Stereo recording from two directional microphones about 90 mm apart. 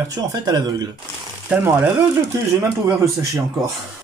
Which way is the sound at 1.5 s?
25° right (ahead or behind).